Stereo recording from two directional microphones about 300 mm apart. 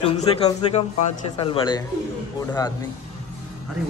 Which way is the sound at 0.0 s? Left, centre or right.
Centre.